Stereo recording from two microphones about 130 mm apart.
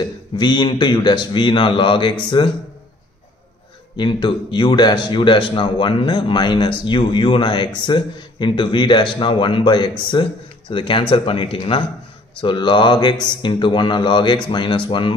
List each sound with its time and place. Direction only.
0.0 s a man's voice: 35° left (ahead or behind)
3.9 s a man's voice: 35° left (ahead or behind)